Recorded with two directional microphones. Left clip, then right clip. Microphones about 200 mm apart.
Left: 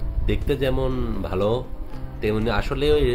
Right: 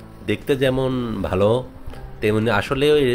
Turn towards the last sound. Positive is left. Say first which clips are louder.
# right 4 dB
turn(degrees=-15)  # may be behind; listen again after turning